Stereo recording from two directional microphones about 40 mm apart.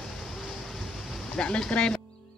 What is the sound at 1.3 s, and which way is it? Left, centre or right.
Speech, left.